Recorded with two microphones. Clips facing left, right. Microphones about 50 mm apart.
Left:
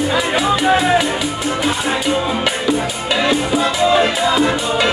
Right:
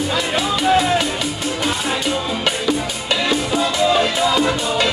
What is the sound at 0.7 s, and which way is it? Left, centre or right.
Music, centre.